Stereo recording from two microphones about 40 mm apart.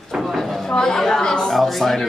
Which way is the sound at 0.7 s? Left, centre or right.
Centre.